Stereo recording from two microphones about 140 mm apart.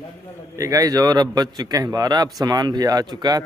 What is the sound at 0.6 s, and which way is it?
Speech, 25° right (ahead or behind).